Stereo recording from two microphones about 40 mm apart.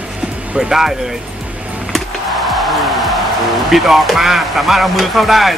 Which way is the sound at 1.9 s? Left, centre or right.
Centre.